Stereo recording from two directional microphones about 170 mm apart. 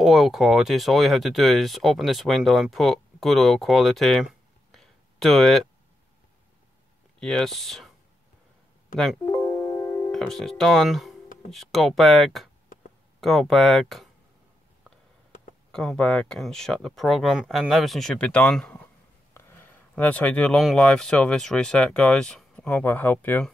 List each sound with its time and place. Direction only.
0.0 s speech: centre (ahead or behind)
7.2 s speech: 5° left (ahead or behind)
8.9 s speech: centre (ahead or behind)
9.2 s music: 15° left (ahead or behind)
10.1 s speech: centre (ahead or behind)
15.7 s speech: 5° left (ahead or behind)